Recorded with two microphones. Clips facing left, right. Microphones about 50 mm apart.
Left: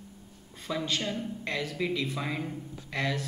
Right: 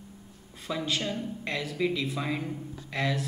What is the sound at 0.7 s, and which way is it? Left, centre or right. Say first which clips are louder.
A woman's voice: right 1 dB; centre.